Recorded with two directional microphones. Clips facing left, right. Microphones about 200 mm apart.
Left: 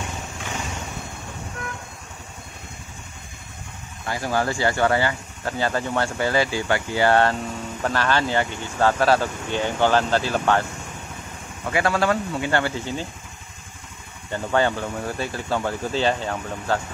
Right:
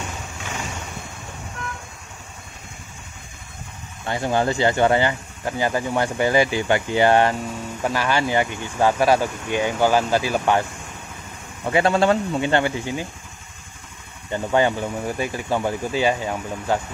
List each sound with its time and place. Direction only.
4.0 s speech: 25° right (ahead or behind)
11.6 s speech: 25° right (ahead or behind)
14.3 s speech: 15° right (ahead or behind)